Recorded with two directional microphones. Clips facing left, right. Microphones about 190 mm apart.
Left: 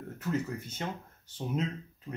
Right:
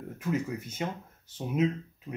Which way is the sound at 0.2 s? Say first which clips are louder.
Right 2 dB; 10° right (ahead or behind).